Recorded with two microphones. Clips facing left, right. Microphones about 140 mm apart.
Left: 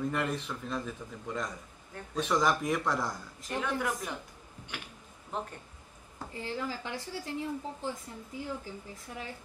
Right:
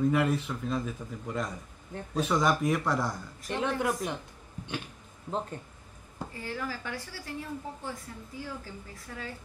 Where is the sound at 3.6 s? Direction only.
25° right (ahead or behind).